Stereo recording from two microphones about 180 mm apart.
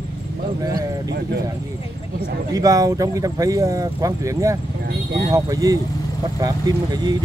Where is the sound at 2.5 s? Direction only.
20° right (ahead or behind).